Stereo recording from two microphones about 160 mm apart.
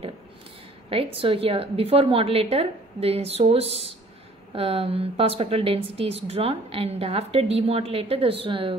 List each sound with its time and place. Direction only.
0.8 s a woman's voice: 35° right (ahead or behind)